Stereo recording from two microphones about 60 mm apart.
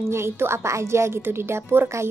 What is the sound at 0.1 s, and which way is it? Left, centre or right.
A woman's voice, right.